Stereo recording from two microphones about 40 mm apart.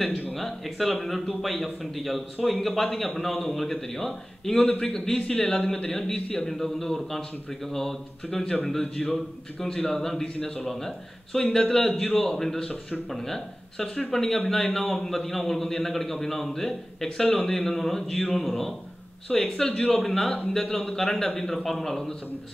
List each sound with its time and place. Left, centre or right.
0.4 s a man's voice: centre
4.6 s a man's voice: left
4.9 s a man's voice: centre